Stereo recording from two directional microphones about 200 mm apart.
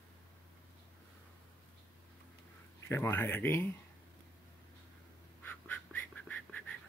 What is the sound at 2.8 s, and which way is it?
Speech, 10° left (ahead or behind).